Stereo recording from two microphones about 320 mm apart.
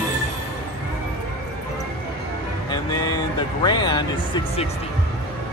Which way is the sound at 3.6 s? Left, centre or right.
Centre.